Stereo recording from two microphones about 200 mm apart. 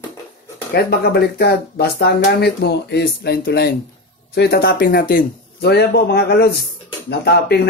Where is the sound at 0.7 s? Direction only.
50° left (ahead or behind).